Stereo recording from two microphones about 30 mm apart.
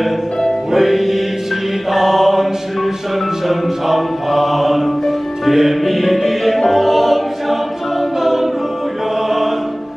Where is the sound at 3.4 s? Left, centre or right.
Centre.